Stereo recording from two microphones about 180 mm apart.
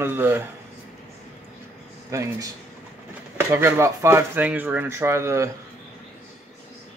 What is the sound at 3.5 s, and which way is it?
Speech, 15° right (ahead or behind).